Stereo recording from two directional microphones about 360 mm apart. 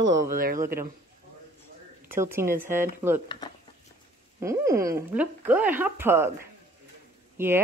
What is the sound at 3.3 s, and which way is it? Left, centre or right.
Speech, centre.